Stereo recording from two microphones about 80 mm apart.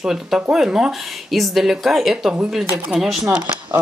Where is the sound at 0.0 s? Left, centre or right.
Centre.